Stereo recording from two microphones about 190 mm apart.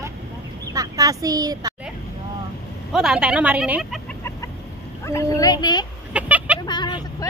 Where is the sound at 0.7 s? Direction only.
20° right (ahead or behind).